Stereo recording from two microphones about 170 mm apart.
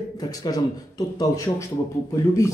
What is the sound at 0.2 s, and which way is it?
A man's voice, 20° left (ahead or behind).